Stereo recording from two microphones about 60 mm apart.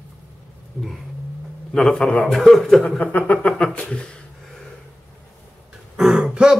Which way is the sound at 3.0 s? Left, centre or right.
Left.